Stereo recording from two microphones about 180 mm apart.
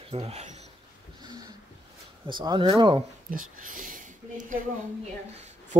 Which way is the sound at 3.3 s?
50° right (ahead or behind).